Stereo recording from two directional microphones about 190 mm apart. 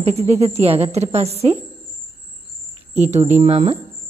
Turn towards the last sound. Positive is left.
turn(degrees=-30)  # may be behind; listen again after turning